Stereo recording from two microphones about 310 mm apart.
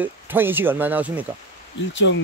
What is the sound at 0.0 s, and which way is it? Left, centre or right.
Speech, centre.